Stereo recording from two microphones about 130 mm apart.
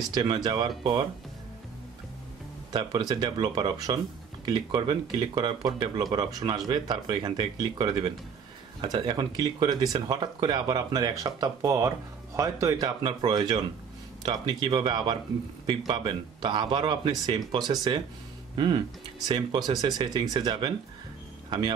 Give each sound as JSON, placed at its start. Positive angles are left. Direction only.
{"t": 0.1, "sound": "speech", "side_deg": -35}
{"t": 2.7, "sound": "a man's voice", "side_deg": -35}